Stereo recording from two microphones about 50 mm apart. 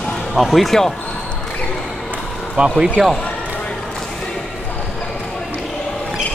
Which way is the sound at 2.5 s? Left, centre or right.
Centre.